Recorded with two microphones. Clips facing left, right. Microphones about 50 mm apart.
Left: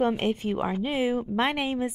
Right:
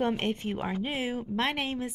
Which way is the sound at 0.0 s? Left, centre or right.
Centre.